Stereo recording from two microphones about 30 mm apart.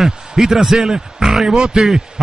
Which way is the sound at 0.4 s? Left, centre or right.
Centre.